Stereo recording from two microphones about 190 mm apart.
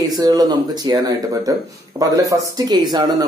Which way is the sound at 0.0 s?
20° right (ahead or behind).